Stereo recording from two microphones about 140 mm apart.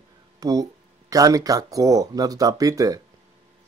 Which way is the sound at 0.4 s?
25° right (ahead or behind).